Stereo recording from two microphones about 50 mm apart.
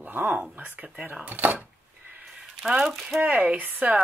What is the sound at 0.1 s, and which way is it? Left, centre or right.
Speech, right.